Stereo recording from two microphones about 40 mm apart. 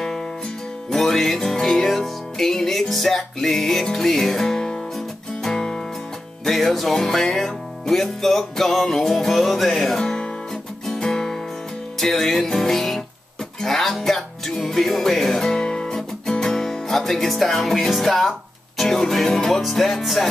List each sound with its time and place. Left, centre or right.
0.8 s music: centre
6.4 s music: centre
9.9 s music: centre
14.7 s speech: centre
18.8 s music: centre